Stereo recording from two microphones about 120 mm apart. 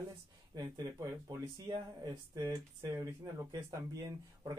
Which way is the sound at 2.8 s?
25° right (ahead or behind).